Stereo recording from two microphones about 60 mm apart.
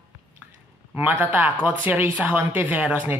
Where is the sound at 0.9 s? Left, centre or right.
Right.